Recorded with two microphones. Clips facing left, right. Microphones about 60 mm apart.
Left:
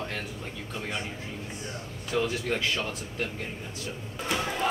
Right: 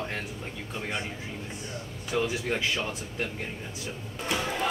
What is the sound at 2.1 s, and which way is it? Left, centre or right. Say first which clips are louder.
Speech: even; centre.